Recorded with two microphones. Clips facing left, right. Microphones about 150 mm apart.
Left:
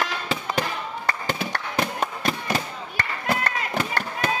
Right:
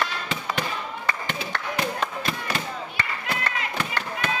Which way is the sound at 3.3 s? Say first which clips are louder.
Left 6 dB; 45° left (ahead or behind).